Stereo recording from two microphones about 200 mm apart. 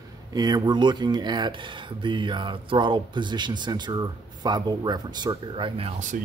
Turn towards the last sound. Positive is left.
turn(degrees=-30)  # may be behind; listen again after turning